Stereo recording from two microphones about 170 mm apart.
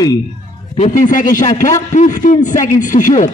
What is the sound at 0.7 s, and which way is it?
A man's voice, 45° left (ahead or behind).